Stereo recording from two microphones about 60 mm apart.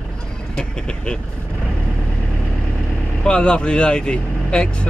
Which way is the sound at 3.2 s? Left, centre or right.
Centre.